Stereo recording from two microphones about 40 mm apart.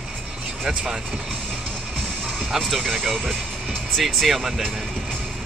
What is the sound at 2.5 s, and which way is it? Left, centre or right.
Speech, centre.